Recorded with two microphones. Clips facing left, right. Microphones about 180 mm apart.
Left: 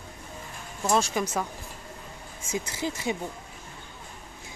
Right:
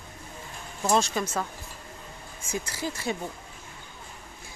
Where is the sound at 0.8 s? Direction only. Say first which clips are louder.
Right 1 dB; centre (ahead or behind).